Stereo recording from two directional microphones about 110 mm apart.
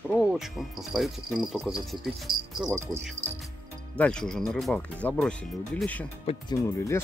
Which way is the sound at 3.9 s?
10° left (ahead or behind).